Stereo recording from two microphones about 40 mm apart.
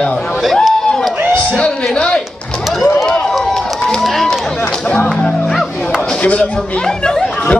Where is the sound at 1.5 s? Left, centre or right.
Left.